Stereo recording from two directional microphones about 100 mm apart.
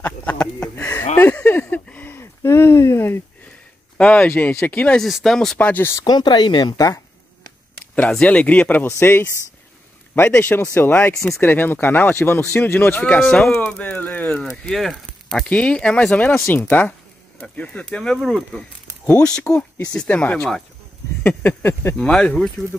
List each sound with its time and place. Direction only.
0.0 s speech: 20° left (ahead or behind)
0.7 s a sound: 15° left (ahead or behind)
4.0 s speech: 15° left (ahead or behind)
5.0 s speech: centre (ahead or behind)
6.0 s speech: 45° left (ahead or behind)
8.1 s speech: 10° left (ahead or behind)
13.0 s speech: 10° left (ahead or behind)
14.4 s speech: 5° left (ahead or behind)
16.3 s speech: 25° left (ahead or behind); by 22.7 s 5° left (ahead or behind)